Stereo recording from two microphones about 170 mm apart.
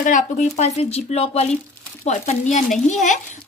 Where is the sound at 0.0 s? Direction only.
45° left (ahead or behind).